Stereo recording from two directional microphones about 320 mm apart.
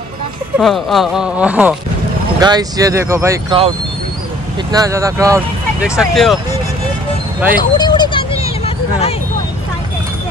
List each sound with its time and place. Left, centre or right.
0.6 s speech: centre
4.7 s speech: centre
7.7 s a sound: centre